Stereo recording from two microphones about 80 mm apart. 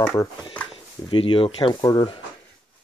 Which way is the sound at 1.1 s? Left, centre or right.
Left.